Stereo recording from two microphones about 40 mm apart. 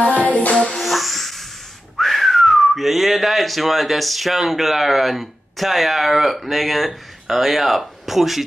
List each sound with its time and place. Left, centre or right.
0.0 s music: left
0.7 s music: centre
2.0 s speech: centre